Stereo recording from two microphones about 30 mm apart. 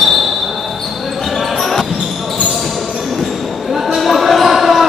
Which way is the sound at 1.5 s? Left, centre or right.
Centre.